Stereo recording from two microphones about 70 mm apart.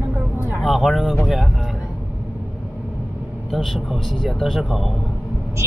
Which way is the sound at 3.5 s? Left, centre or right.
Centre.